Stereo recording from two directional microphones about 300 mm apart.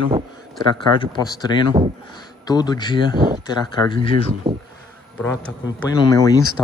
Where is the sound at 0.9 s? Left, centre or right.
Centre.